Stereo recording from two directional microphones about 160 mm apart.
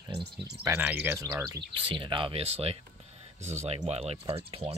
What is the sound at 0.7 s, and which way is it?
Speech, 10° right (ahead or behind).